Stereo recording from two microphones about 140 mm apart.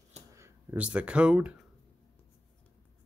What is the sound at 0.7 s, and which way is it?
Speech, 10° right (ahead or behind).